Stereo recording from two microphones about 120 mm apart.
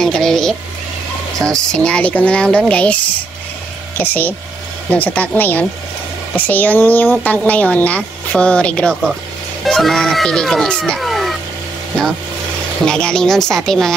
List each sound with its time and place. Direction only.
0.0 s a woman's voice: 5° left (ahead or behind)
4.0 s a woman's voice: 15° left (ahead or behind); by 11.3 s centre (ahead or behind)
12.8 s a woman's voice: 5° left (ahead or behind)